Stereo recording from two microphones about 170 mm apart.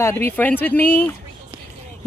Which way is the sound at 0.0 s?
15° left (ahead or behind).